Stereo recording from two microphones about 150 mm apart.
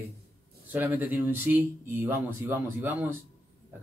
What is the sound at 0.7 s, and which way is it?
Speech, 15° right (ahead or behind).